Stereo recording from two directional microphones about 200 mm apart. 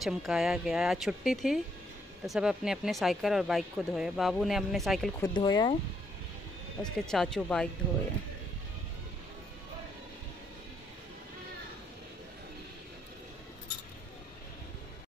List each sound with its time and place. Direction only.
0.0 s speech: centre (ahead or behind)
5.2 s speech: 20° left (ahead or behind)
6.8 s speech: 5° left (ahead or behind)